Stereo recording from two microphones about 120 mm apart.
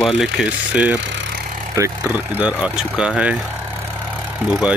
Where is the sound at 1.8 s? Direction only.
25° right (ahead or behind).